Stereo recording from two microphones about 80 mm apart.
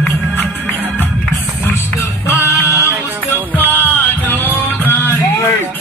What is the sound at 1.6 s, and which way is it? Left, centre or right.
Music, left.